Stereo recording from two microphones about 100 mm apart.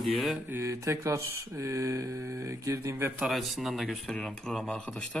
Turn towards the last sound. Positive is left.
turn(degrees=10)  # may be behind; listen again after turning